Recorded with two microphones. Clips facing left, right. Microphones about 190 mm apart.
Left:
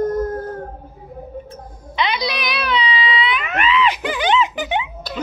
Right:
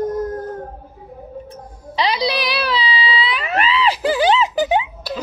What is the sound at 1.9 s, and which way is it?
Music, 35° right (ahead or behind).